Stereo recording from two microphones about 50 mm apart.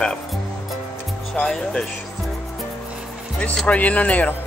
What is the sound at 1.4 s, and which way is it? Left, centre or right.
Speech, centre.